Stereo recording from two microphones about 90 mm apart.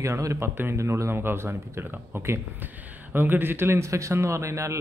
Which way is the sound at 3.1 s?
25° right (ahead or behind).